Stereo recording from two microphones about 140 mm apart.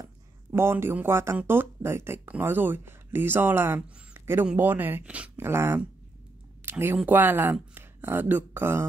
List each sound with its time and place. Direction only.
0.0 s speech: 20° right (ahead or behind)
6.6 s a sound: 15° right (ahead or behind)
7.1 s speech: 15° right (ahead or behind)